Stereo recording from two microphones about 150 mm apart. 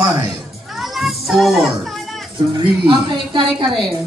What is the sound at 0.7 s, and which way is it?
Children playing, centre (ahead or behind).